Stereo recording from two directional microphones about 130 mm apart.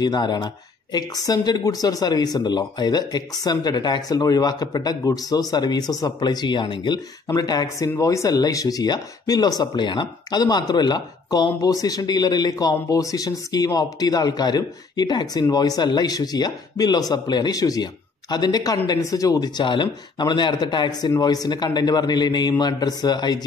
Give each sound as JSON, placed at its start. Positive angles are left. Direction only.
{"t": 0.0, "sound": "speech", "side_deg": 35}